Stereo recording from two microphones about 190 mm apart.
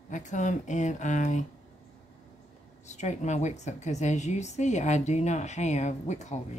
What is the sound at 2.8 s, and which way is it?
A woman's voice, 40° left (ahead or behind).